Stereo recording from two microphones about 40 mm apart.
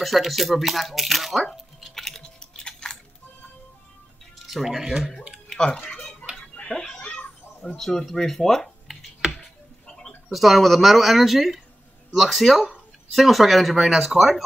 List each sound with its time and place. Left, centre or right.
0.0 s speech: centre
1.8 s stir: centre
2.2 s a sound: left
4.5 s speech: centre
6.3 s music: left
6.7 s a sound: centre
7.6 s speech: centre
9.4 s tick-tock: centre
10.3 s speech: centre